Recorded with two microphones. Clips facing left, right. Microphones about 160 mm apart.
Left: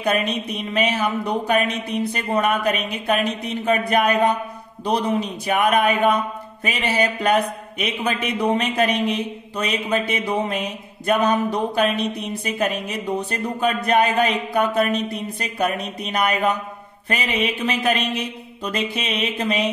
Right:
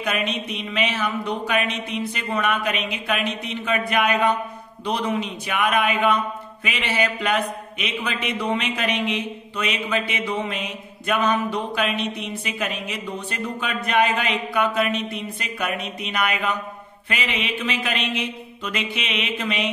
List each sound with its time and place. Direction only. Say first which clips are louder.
0.0 s a man's voice: left 4 dB; 40° left (ahead or behind)